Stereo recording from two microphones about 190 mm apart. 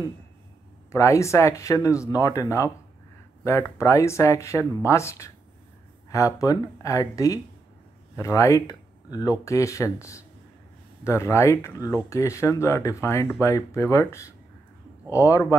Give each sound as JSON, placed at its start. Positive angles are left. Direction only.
{"t": 0.9, "sound": "speech", "side_deg": 15}